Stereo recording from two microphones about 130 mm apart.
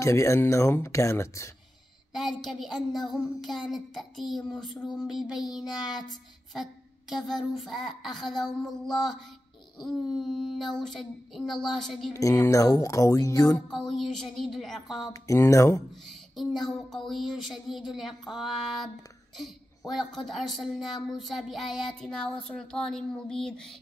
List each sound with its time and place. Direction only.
0.0 s speech: 20° left (ahead or behind)
2.1 s a child's voice: centre (ahead or behind)
12.1 s speech: 25° left (ahead or behind)
13.7 s a child's voice: 5° left (ahead or behind)
15.1 s speech: 25° left (ahead or behind)
16.1 s a child's voice: centre (ahead or behind)
19.9 s a child's voice: centre (ahead or behind)